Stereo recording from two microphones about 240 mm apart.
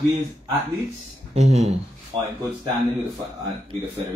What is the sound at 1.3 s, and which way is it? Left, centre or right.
Speech, right.